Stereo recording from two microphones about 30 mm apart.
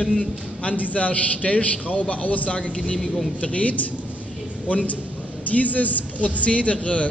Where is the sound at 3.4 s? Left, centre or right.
Left.